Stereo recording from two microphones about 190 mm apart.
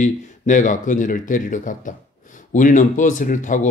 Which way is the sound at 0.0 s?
40° left (ahead or behind).